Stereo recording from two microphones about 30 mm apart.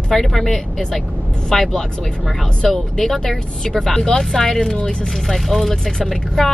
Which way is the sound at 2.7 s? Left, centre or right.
Centre.